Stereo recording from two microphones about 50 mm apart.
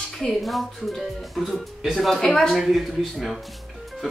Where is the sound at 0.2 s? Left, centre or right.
Centre.